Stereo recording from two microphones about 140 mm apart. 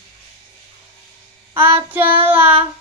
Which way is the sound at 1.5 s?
15° right (ahead or behind).